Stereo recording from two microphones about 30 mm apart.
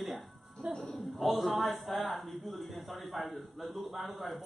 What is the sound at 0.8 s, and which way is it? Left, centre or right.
A man's voice, centre.